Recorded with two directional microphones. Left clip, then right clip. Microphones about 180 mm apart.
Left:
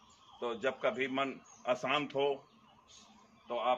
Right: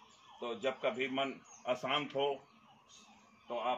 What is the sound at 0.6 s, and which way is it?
A man's voice, 15° right (ahead or behind).